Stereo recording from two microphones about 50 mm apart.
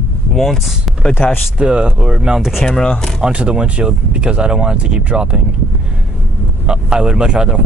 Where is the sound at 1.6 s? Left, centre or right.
Right.